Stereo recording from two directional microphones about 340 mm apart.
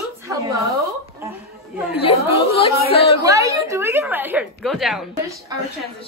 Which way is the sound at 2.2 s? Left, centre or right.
Centre.